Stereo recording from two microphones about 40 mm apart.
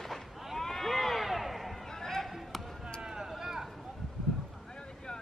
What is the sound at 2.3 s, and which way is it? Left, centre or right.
Basketball bounce, centre.